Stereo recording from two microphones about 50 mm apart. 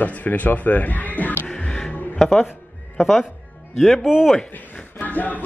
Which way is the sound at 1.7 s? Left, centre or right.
Centre.